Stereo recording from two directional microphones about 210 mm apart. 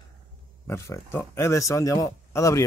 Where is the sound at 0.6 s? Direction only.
15° left (ahead or behind).